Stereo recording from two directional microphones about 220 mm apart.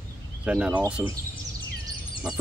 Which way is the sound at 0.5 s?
5° right (ahead or behind).